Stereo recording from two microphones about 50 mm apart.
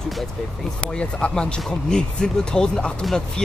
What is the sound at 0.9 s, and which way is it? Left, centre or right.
Speech, left.